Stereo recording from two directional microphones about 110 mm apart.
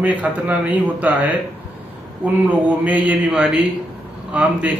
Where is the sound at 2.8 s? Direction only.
15° right (ahead or behind).